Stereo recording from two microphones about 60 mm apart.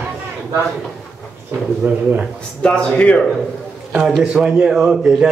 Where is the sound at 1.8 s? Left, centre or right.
Centre.